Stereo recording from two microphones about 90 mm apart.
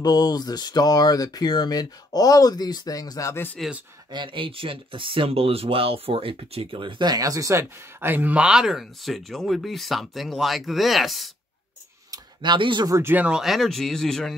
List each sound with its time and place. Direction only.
0.0 s speech: 50° left (ahead or behind)
3.6 s speech: 5° left (ahead or behind)
4.1 s speech: 65° right (ahead or behind); by 8.1 s 35° right (ahead or behind)
8.1 s speech: 15° right (ahead or behind); by 11.2 s centre (ahead or behind)
12.4 s speech: 60° right (ahead or behind)
13.0 s speech: 15° right (ahead or behind)
13.4 s speech: centre (ahead or behind)